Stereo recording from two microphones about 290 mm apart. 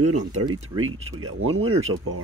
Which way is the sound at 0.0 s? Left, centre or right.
Right.